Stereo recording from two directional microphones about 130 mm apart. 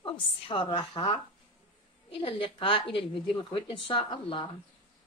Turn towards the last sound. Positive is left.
turn(degrees=40)  # may be behind; listen again after turning